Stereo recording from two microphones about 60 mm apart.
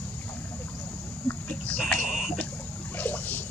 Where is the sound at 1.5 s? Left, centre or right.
Left.